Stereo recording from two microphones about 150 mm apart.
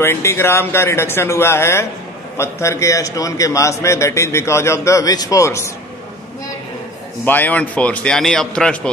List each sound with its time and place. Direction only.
0.0 s a man's voice: 20° left (ahead or behind)
7.2 s speech: 10° left (ahead or behind)